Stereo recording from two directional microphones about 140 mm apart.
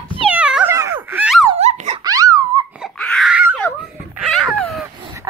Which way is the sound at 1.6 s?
55° right (ahead or behind).